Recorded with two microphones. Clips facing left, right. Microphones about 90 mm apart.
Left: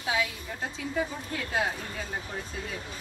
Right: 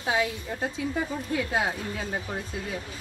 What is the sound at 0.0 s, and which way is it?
Speech, 35° right (ahead or behind).